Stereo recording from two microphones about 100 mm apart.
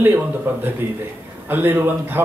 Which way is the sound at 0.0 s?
20° right (ahead or behind).